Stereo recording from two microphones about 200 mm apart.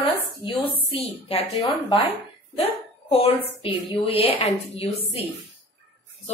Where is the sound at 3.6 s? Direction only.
25° left (ahead or behind).